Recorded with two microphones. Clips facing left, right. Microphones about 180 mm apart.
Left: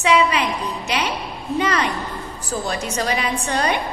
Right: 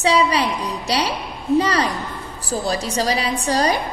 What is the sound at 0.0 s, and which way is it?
A woman's voice, 35° right (ahead or behind).